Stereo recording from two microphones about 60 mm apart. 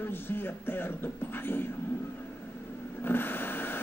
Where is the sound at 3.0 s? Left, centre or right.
Left.